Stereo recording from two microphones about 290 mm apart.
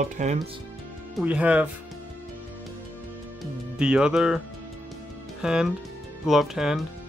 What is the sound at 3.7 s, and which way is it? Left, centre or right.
Speech, centre.